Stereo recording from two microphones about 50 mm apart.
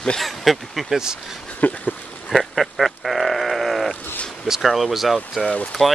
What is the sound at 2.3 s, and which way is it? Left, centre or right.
Goat, centre.